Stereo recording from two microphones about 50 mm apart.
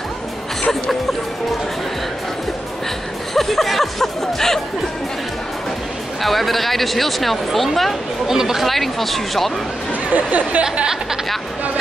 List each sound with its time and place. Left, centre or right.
3.3 s speech: centre
6.2 s speech: centre
8.3 s speech: centre
10.1 s speech: right
10.6 s speech: centre